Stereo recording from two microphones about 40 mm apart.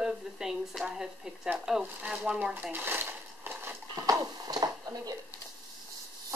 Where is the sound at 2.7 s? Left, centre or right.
Right.